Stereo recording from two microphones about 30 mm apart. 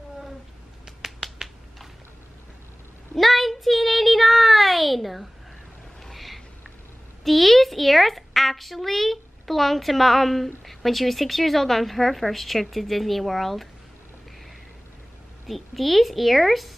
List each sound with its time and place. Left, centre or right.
0.8 s finger snapping: centre
3.2 s child singing: centre
6.1 s a sound: centre
7.2 s a woman's voice: centre
15.4 s a woman's voice: centre